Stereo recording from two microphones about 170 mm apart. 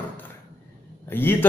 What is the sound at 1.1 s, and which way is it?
Speech, 10° left (ahead or behind).